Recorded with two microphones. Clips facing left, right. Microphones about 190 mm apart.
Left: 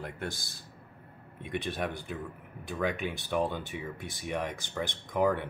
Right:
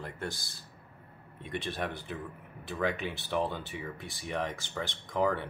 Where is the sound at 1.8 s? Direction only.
Centre (ahead or behind).